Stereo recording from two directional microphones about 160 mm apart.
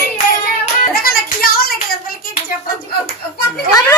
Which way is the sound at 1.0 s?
70° left (ahead or behind).